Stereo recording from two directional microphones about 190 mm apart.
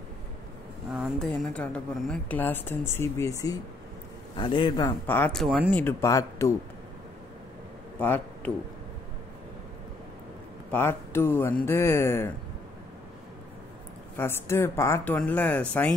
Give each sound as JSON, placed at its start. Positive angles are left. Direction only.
{"t": 0.9, "sound": "a woman's voice", "side_deg": 0}
{"t": 5.0, "sound": "a woman's voice", "side_deg": 10}
{"t": 8.0, "sound": "a man's voice", "side_deg": 10}
{"t": 10.7, "sound": "a woman's voice", "side_deg": 10}
{"t": 14.1, "sound": "a woman's voice", "side_deg": 15}